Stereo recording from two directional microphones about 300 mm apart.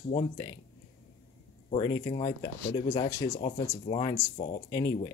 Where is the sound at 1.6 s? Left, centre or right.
Centre.